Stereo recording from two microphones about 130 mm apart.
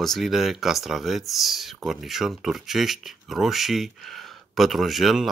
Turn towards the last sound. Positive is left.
turn(degrees=0)  # may be behind; listen again after turning